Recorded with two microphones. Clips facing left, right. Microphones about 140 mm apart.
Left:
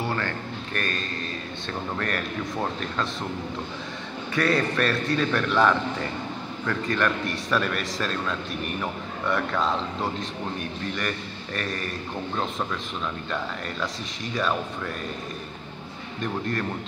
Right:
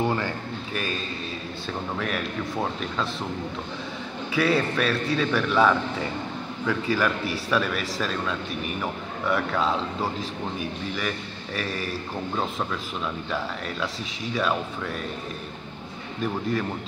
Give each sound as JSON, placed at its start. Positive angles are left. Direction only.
{"t": 0.0, "sound": "a sound", "side_deg": -15}
{"t": 0.7, "sound": "a man's voice", "side_deg": -5}
{"t": 4.3, "sound": "a man's voice", "side_deg": -5}
{"t": 13.3, "sound": "a man's voice", "side_deg": 0}
{"t": 16.2, "sound": "a man's voice", "side_deg": 0}